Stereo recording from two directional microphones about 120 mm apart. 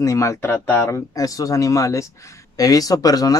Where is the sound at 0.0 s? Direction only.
25° left (ahead or behind).